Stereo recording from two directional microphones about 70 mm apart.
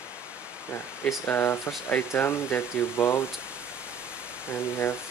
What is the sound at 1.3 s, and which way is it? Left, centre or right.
Speech, left.